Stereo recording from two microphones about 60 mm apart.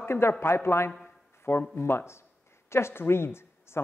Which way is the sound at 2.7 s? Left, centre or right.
Left.